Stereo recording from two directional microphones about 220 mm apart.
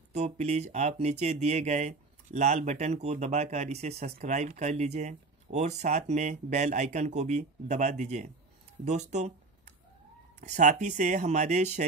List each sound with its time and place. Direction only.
0.1 s speech: 30° right (ahead or behind)